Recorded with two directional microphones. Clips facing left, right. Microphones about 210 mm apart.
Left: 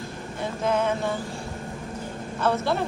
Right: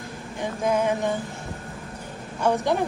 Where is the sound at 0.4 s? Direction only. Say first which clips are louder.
Right 1 dB; 15° right (ahead or behind).